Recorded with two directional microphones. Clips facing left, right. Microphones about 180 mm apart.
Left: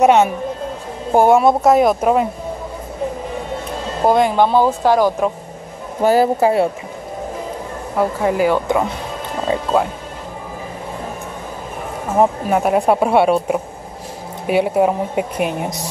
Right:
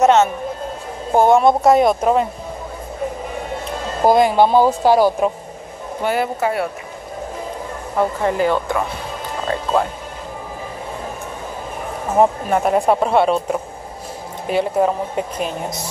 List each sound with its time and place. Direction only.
0.0 s speech: 10° left (ahead or behind)
4.0 s speech: 10° right (ahead or behind)
6.0 s a man's voice: 35° left (ahead or behind)
7.9 s speech: 5° left (ahead or behind)
12.2 s speech: 5° left (ahead or behind)